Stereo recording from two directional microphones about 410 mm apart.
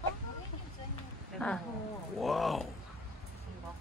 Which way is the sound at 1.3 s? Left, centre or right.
Centre.